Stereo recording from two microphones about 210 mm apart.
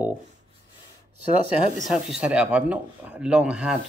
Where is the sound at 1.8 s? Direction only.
5° right (ahead or behind).